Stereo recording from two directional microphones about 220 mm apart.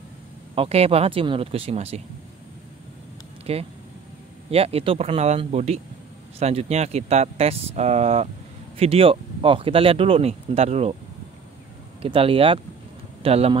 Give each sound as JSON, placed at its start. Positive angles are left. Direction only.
{"t": 0.6, "sound": "speech", "side_deg": -25}
{"t": 3.5, "sound": "speech", "side_deg": -25}
{"t": 12.0, "sound": "speech", "side_deg": -25}